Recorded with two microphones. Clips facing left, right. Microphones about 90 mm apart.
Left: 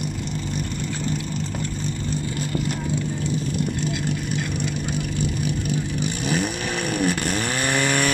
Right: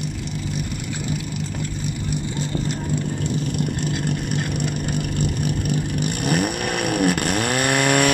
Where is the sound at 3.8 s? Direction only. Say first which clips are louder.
Right 1 dB; 55° right (ahead or behind).